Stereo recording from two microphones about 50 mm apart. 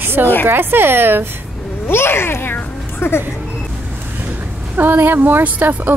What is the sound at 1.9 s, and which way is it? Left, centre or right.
A child's voice, left.